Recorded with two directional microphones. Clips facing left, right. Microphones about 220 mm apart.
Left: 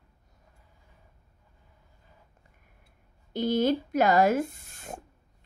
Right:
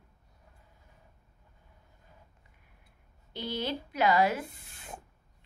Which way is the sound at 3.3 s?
45° left (ahead or behind).